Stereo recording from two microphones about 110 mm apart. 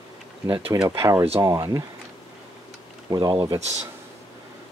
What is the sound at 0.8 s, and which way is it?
Speech, 25° right (ahead or behind).